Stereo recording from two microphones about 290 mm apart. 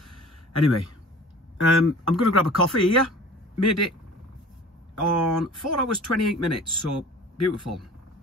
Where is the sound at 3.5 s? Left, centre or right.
Left.